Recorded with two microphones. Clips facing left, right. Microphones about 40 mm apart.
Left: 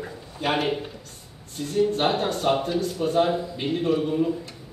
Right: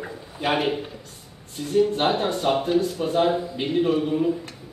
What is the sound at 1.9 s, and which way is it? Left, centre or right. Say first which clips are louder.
A man's voice: right 1 dB; centre.